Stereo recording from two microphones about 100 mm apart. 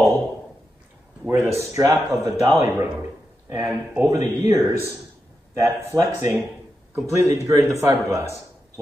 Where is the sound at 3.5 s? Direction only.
20° right (ahead or behind).